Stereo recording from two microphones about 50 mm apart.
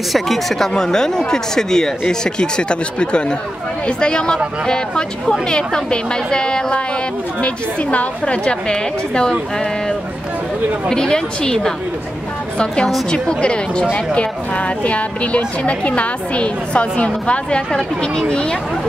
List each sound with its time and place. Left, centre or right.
0.1 s speech: centre
13.1 s speech: centre
17.7 s speech: centre